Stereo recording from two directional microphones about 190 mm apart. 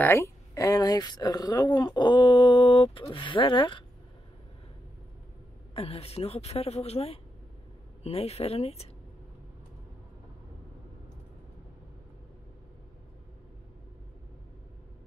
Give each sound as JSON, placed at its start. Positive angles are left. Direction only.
{"t": 0.0, "sound": "speech", "side_deg": 15}
{"t": 5.8, "sound": "a woman's voice", "side_deg": 30}